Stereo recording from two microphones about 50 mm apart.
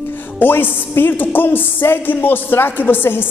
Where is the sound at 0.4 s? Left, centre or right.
Left.